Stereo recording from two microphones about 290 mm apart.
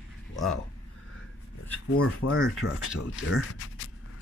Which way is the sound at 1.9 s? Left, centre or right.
Left.